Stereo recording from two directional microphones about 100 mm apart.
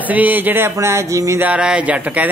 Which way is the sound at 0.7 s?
30° right (ahead or behind).